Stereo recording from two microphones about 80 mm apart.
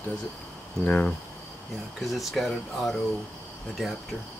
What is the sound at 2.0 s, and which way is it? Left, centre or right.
Speech, centre.